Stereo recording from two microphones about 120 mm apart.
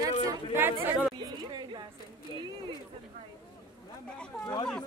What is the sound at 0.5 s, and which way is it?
Speech, 15° right (ahead or behind).